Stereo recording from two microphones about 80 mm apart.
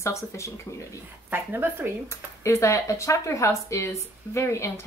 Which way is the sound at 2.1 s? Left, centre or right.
Left.